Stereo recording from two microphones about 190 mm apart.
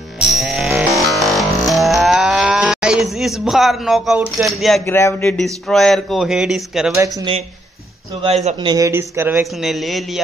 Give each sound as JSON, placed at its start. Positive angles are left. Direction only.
{"t": 0.2, "sound": "music", "side_deg": 0}
{"t": 4.8, "sound": "speech", "side_deg": 15}
{"t": 5.4, "sound": "speech", "side_deg": 5}
{"t": 6.9, "sound": "speech", "side_deg": -15}
{"t": 8.2, "sound": "speech", "side_deg": -35}
{"t": 8.5, "sound": "speech", "side_deg": -20}
{"t": 9.7, "sound": "speech", "side_deg": 0}